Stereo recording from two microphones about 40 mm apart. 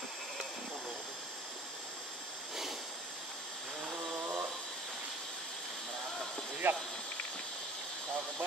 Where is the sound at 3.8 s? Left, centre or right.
Centre.